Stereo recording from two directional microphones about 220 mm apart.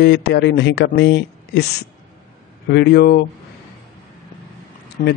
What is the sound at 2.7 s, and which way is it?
Speech, 50° left (ahead or behind).